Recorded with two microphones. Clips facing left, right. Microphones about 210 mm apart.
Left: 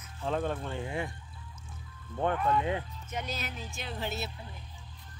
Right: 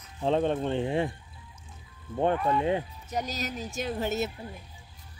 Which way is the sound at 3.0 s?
40° right (ahead or behind).